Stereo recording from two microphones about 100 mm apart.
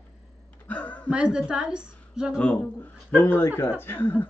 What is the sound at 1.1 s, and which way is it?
A woman's voice, 10° right (ahead or behind).